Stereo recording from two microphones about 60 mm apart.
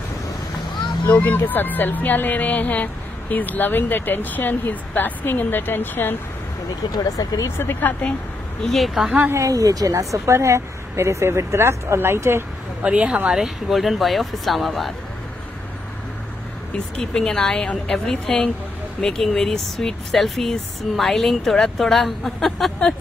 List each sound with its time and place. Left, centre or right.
1.1 s speech: left
6.9 s speech: left
7.5 s speech: left
8.7 s speech: centre
9.3 s a woman's voice: right
12.8 s speech: centre
17.0 s a woman's voice: centre